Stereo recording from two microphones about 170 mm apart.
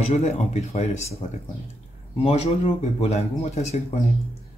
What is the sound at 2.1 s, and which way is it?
Speech, 35° left (ahead or behind).